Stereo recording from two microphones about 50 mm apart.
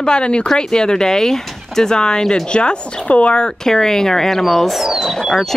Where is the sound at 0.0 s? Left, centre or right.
Centre.